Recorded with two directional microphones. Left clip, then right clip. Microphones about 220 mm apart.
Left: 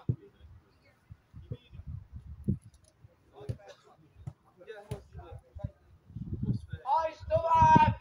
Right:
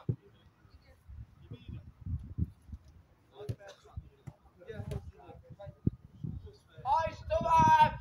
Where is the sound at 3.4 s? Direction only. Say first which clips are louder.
Right 1 dB; 50° right (ahead or behind).